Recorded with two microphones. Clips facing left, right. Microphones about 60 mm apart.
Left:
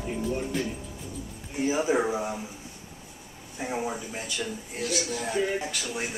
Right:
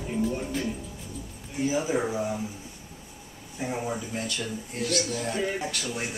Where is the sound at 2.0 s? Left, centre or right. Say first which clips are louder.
Left 1 dB; centre.